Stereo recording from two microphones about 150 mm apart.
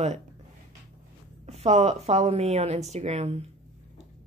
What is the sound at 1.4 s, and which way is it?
Speech, 45° right (ahead or behind).